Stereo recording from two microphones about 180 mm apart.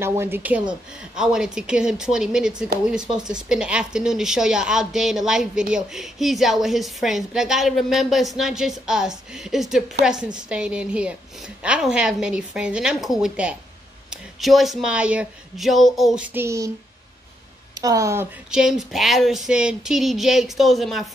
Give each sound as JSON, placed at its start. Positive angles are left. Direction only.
{"t": 0.0, "sound": "speech", "side_deg": -15}
{"t": 17.7, "sound": "speech", "side_deg": -20}
{"t": 18.5, "sound": "speech", "side_deg": -5}